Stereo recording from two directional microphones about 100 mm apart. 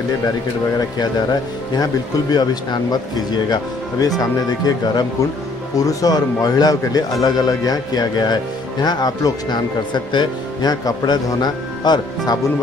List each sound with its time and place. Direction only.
0.7 s speech: 45° left (ahead or behind)